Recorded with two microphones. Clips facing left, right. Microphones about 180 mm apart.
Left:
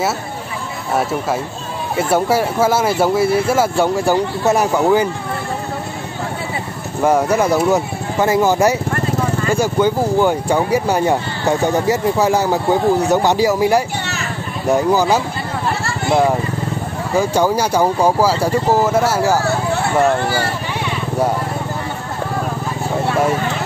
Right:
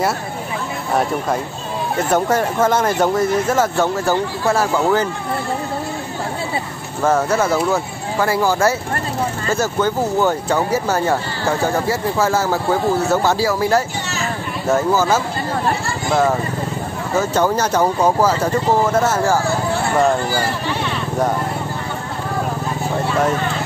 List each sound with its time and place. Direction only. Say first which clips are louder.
2.0 s speech: left 2 dB; 10° left (ahead or behind)
7.0 s speech: left 2 dB; 10° left (ahead or behind)